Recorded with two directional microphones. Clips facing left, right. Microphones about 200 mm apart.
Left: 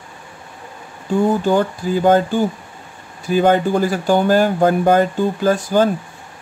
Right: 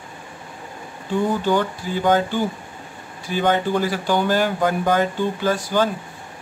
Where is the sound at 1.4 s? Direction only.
45° left (ahead or behind).